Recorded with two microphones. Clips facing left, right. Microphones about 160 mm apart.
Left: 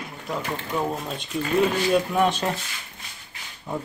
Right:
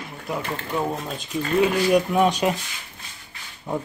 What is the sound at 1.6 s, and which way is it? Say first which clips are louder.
Speech: right 3 dB; 10° right (ahead or behind).